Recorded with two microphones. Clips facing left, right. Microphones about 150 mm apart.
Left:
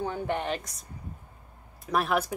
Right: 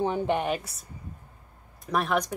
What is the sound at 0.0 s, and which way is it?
Speech, 20° right (ahead or behind).